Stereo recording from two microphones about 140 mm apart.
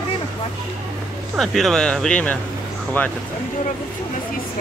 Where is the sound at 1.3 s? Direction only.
Centre (ahead or behind).